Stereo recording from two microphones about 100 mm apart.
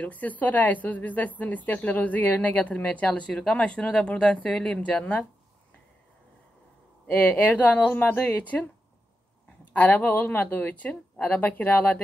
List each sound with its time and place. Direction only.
0.0 s a woman's voice: 15° left (ahead or behind)
7.1 s a woman's voice: 15° left (ahead or behind)
9.7 s a woman's voice: 15° left (ahead or behind)